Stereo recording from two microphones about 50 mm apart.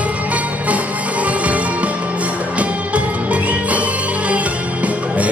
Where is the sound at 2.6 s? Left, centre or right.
Right.